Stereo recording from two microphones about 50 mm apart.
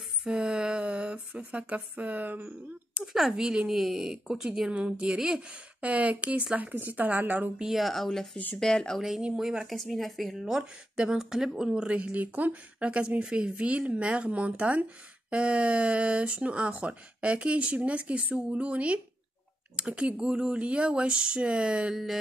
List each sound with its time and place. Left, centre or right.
0.2 s speech: centre; by 2.3 s right
3.1 s speech: centre
3.3 s speech: centre
4.6 s speech: right
7.7 s speech: centre
9.4 s speech: centre
9.8 s speech: centre
11.9 s speech: right
21.9 s speech: centre